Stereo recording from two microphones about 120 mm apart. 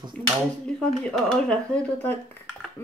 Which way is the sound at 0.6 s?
5° left (ahead or behind).